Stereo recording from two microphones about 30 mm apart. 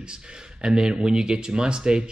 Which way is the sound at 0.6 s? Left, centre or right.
Right.